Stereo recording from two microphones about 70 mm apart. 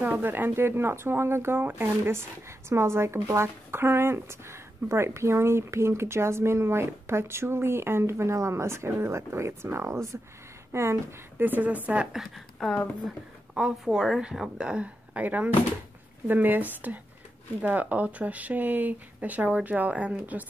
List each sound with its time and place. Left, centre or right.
0.0 s a woman's voice: right
11.4 s speech: right
12.6 s a woman's voice: centre
13.6 s a woman's voice: centre
14.6 s speech: centre